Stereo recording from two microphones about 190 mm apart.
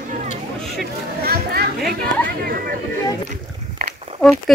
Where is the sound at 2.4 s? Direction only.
50° right (ahead or behind).